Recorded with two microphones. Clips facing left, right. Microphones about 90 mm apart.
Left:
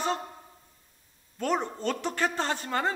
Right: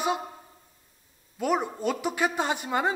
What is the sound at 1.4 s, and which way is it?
A man's voice, 5° right (ahead or behind).